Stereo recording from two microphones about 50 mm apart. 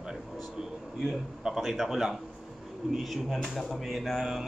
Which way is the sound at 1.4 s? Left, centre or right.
Centre.